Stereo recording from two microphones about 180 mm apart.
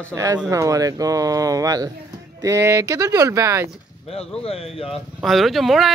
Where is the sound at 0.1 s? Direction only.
15° right (ahead or behind).